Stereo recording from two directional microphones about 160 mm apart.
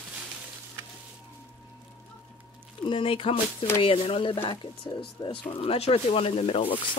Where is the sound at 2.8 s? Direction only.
35° left (ahead or behind).